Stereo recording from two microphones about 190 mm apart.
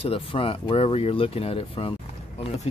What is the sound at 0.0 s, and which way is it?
Speech, 30° left (ahead or behind).